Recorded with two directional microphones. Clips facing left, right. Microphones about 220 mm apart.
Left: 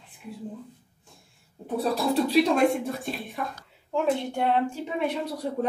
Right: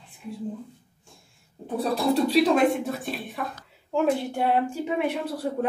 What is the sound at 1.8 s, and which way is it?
A woman's voice, centre (ahead or behind).